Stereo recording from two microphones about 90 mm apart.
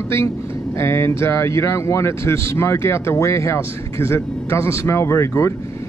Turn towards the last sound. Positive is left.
turn(degrees=30)  # may be behind; listen again after turning